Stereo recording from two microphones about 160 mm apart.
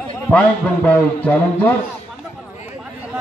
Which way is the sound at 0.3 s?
5° left (ahead or behind).